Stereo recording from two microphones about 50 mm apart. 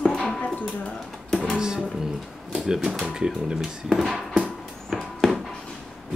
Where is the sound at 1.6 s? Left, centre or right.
Centre.